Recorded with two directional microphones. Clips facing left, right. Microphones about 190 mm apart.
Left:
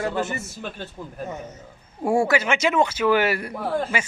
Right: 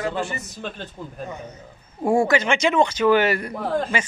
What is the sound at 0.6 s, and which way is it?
Speech, 10° left (ahead or behind).